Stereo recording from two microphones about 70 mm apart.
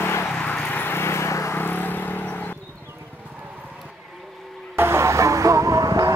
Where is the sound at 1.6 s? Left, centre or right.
Left.